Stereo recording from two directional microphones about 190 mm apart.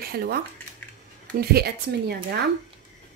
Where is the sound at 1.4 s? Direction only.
55° right (ahead or behind).